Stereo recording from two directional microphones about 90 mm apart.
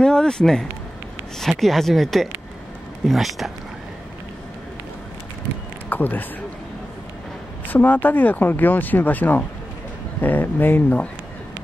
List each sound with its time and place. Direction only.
0.0 s speech: 10° left (ahead or behind)
5.9 s a sound: 20° left (ahead or behind)
7.6 s speech: 20° left (ahead or behind)